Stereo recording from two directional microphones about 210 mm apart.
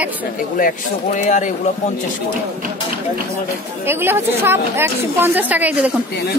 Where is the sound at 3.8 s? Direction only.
10° right (ahead or behind).